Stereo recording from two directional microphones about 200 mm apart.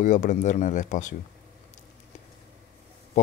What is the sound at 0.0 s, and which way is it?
Speech, 40° left (ahead or behind).